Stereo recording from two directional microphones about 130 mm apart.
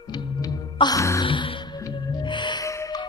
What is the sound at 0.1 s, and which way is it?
Music, 35° left (ahead or behind).